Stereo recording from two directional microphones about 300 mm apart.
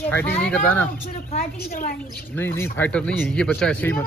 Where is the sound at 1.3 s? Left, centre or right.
Left.